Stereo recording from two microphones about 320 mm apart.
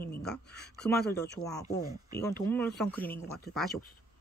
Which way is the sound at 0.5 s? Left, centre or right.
Left.